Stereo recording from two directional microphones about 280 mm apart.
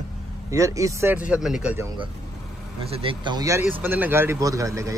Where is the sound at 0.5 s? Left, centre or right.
Centre.